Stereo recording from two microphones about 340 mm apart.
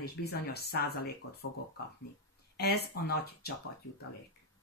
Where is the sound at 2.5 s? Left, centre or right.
Left.